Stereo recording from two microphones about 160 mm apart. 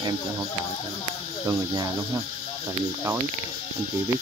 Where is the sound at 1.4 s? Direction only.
25° right (ahead or behind).